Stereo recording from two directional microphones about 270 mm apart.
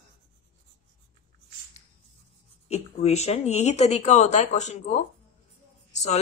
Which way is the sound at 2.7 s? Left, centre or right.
Left.